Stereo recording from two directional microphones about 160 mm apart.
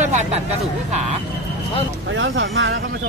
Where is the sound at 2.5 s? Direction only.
90° right.